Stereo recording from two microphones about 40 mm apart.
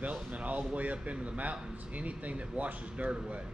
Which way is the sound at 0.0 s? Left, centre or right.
Right.